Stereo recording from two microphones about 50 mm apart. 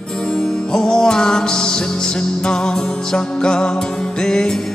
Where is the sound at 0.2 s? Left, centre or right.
Centre.